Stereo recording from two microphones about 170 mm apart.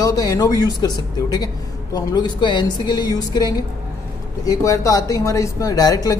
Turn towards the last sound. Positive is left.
turn(degrees=20)  # may be behind; listen again after turning